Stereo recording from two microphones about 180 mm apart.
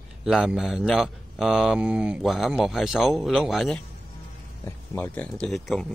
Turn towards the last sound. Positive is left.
turn(degrees=0)  # may be behind; listen again after turning